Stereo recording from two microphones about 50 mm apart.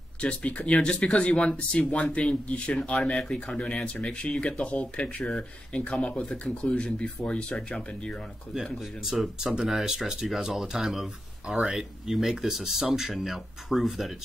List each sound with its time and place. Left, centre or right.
0.2 s speech: left
9.1 s speech: centre